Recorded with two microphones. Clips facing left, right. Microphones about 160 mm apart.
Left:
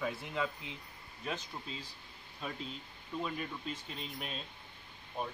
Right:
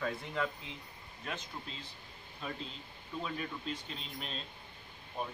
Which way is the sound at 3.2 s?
5° left (ahead or behind).